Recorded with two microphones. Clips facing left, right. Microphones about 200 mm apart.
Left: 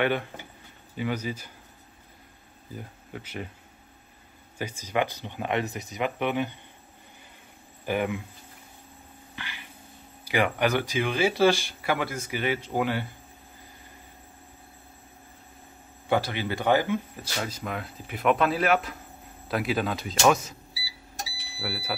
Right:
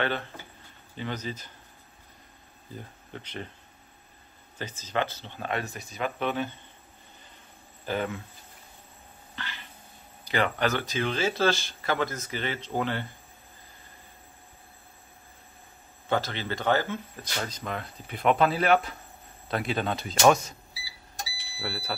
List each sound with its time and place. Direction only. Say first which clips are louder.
0.0 s speech: left 4 dB; 15° left (ahead or behind)
2.7 s speech: left 2 dB; 10° left (ahead or behind)
4.6 s speech: left 3 dB; 10° left (ahead or behind)
7.8 s speech: left 3 dB; 15° left (ahead or behind)
9.3 s a sound: right 1 dB; 10° left (ahead or behind)
10.2 s speech: left 2 dB; 10° left (ahead or behind)
16.1 s speech: left 3 dB; 15° left (ahead or behind)
21.5 s speech: left 1 dB; 5° left (ahead or behind)